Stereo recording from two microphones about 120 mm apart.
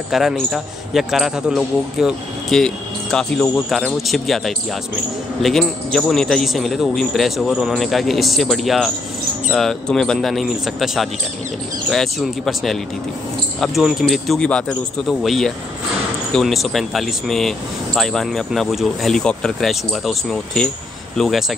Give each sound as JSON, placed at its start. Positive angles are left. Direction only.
{"t": 0.1, "sound": "a man's voice", "side_deg": 0}